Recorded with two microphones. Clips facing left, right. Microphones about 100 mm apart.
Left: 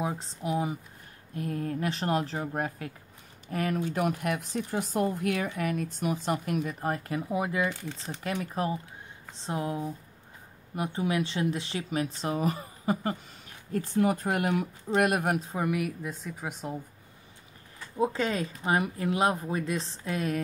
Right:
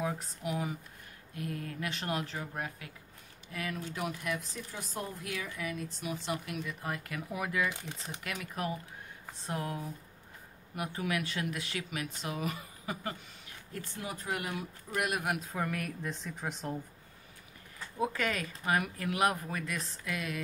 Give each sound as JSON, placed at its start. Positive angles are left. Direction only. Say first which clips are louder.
{"t": 0.0, "sound": "speech", "louder": "left 3 dB", "side_deg": 25}
{"t": 7.7, "sound": "speech", "louder": "left 5 dB", "side_deg": -15}
{"t": 8.2, "sound": "speech", "louder": "left 7 dB", "side_deg": 30}
{"t": 14.0, "sound": "speech", "louder": "left 8 dB", "side_deg": 50}
{"t": 15.5, "sound": "a woman's voice", "louder": "left 6 dB", "side_deg": 15}
{"t": 17.9, "sound": "speech", "louder": "left 5 dB", "side_deg": 25}